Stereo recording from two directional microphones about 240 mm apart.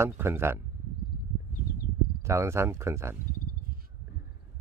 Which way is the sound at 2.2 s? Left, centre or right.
Centre.